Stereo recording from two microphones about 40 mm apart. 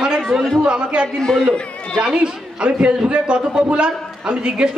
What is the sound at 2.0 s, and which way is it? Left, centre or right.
A man's voice, right.